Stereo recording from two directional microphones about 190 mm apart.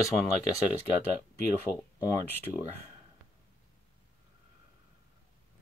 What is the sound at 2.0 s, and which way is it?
Speech, 15° left (ahead or behind).